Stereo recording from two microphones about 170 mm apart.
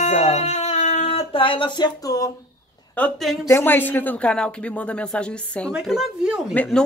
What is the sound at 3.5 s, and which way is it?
Speech, 10° left (ahead or behind).